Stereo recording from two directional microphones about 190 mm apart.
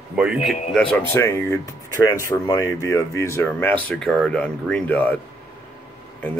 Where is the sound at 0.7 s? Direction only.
5° left (ahead or behind).